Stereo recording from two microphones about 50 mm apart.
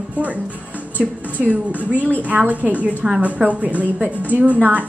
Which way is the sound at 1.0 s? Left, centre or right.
Centre.